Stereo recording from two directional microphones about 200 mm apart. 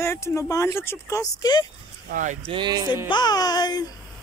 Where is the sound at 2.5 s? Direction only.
20° right (ahead or behind).